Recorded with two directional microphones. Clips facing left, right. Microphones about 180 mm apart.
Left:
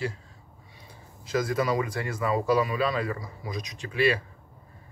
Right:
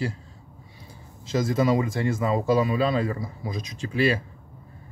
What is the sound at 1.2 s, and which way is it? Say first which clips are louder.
A man's voice: right 3 dB; 25° right (ahead or behind).